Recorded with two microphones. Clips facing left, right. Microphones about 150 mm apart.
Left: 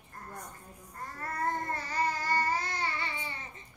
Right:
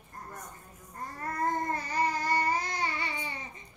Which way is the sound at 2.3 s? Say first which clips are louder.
Right 2 dB; 15° right (ahead or behind).